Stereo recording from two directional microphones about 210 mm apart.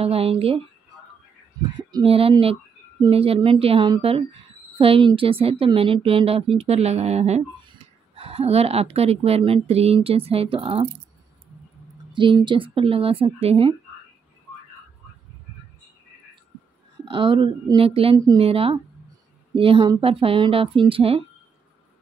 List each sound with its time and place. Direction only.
0.0 s speech: 30° right (ahead or behind)
1.8 s speech: 20° right (ahead or behind)
12.1 s speech: 20° right (ahead or behind)
17.0 s speech: 25° right (ahead or behind)